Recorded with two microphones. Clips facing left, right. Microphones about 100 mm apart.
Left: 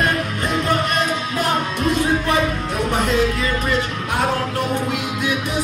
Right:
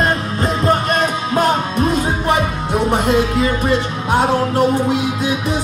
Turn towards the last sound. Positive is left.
turn(degrees=-30)  # may be behind; listen again after turning